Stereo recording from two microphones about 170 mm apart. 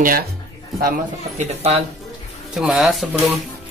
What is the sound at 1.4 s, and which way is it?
Speech, 40° right (ahead or behind).